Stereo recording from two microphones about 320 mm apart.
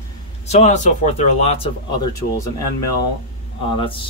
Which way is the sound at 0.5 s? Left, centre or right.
Left.